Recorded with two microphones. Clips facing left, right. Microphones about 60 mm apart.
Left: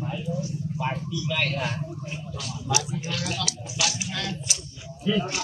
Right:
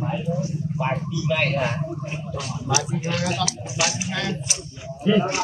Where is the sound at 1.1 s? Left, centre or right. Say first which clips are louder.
Right 5 dB; right.